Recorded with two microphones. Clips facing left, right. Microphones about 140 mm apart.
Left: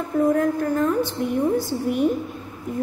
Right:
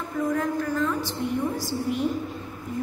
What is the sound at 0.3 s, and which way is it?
A woman's voice, 50° left (ahead or behind).